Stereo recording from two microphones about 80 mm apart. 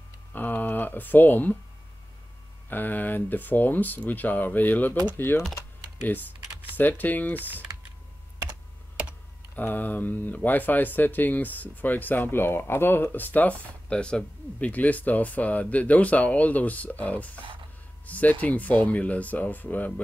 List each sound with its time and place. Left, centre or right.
0.3 s a sound: left
2.7 s speech: left
6.8 s speech: left
9.6 s speech: left